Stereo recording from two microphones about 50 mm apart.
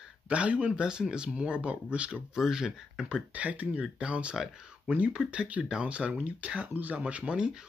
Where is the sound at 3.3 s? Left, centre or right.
Right.